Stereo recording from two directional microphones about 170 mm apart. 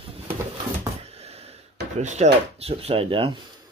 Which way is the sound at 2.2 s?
40° right (ahead or behind).